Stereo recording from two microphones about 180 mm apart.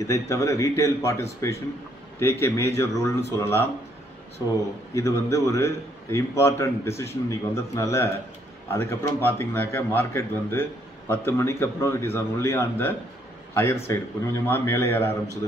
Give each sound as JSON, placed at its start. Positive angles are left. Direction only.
{"t": 0.0, "sound": "a man's voice", "side_deg": 15}
{"t": 4.9, "sound": "a man's voice", "side_deg": 15}